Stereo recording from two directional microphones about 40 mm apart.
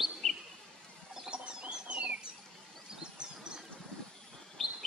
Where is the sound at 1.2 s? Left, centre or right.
Right.